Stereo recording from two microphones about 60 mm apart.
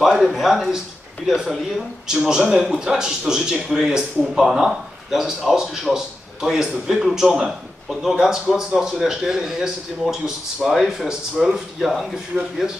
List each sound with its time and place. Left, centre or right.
0.0 s speech: centre